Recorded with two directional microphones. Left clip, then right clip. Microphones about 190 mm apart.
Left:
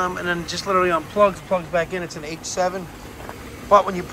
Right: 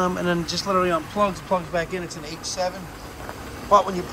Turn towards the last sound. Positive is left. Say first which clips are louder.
# left 2 dB
turn(degrees=-20)  # may be behind; listen again after turning